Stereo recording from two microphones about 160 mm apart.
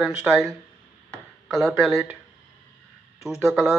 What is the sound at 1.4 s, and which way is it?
Speech, centre (ahead or behind).